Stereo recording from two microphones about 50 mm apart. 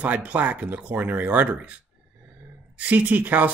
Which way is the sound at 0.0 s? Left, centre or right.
Right.